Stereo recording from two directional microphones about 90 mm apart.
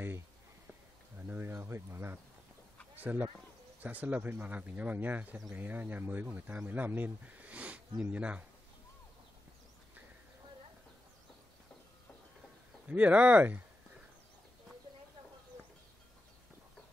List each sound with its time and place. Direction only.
1.2 s speech: 25° right (ahead or behind)
12.8 s speech: 15° right (ahead or behind)